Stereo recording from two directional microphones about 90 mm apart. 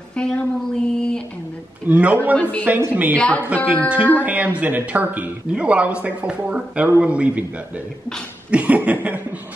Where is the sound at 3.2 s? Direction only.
15° left (ahead or behind).